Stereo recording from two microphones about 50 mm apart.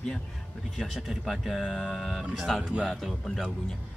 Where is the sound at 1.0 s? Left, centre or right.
Centre.